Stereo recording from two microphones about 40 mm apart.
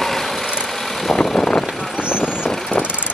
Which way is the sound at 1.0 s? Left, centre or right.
Centre.